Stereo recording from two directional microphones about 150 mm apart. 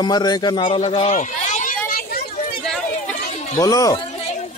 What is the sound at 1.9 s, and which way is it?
Children playing, 75° left (ahead or behind).